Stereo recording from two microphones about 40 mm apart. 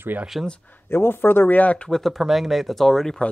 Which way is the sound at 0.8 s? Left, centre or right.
Left.